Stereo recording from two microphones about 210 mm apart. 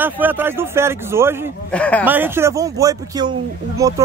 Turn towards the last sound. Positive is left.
turn(degrees=-15)  # may be behind; listen again after turning